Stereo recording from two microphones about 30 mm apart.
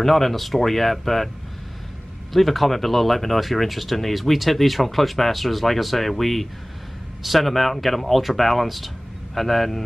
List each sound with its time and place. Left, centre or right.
0.0 s speech: centre
2.3 s speech: centre